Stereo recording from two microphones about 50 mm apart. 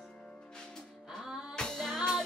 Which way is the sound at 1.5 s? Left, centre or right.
Centre.